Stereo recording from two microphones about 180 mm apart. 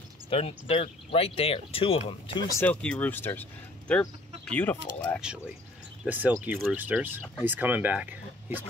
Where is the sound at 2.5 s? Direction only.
10° left (ahead or behind).